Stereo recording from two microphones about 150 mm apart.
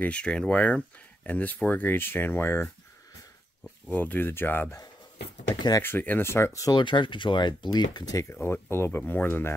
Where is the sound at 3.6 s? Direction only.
10° left (ahead or behind); by 5.8 s 30° left (ahead or behind).